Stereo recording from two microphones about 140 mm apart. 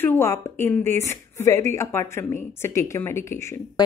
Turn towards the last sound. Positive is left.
turn(degrees=20)  # may be behind; listen again after turning